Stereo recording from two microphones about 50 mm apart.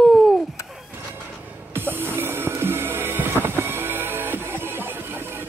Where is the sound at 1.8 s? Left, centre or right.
Right.